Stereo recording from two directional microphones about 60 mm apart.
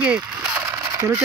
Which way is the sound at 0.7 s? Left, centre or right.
Right.